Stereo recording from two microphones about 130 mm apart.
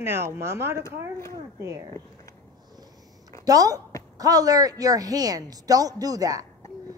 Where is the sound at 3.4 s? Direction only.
30° right (ahead or behind).